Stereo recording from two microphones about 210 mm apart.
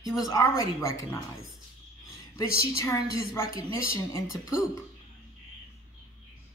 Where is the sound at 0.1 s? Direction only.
15° left (ahead or behind).